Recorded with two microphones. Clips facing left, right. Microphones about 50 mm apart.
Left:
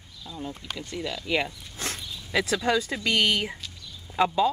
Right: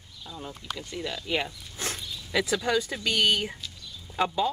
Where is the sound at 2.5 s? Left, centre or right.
Left.